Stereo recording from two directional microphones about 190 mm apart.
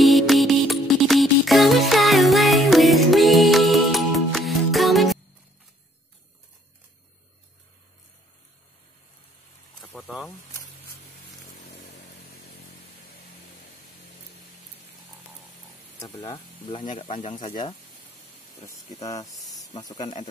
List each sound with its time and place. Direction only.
0.0 s music: centre (ahead or behind)
9.8 s a sound: 5° left (ahead or behind)
17.0 s speech: 30° left (ahead or behind)
19.0 s speech: 20° left (ahead or behind)
19.5 s snake: 20° left (ahead or behind)